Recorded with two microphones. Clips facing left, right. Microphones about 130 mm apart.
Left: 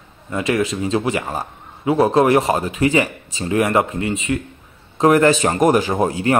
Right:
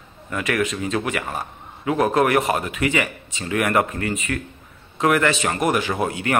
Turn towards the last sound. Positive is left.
turn(degrees=35)  # may be behind; listen again after turning